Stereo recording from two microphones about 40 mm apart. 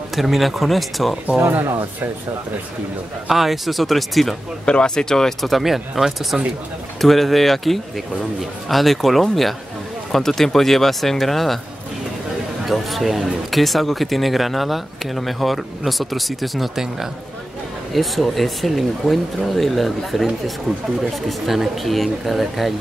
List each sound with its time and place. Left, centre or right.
0.1 s speech: centre
3.3 s speech: centre
4.6 s speech: left
5.4 s speech: centre
12.6 s speech: centre
21.5 s speech: centre